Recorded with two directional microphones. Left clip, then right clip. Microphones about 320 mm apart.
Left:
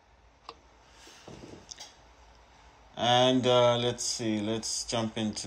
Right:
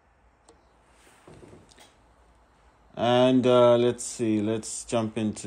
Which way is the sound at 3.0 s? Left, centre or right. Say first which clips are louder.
Right 3 dB; right.